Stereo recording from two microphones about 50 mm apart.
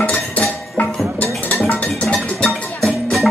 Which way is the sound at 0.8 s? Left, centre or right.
Left.